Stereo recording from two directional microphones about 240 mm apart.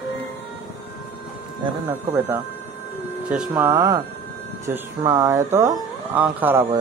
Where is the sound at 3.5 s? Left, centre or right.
Centre.